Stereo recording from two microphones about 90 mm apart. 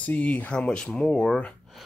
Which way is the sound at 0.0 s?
15° left (ahead or behind).